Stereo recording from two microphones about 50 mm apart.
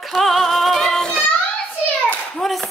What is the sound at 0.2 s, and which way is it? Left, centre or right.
Music, centre.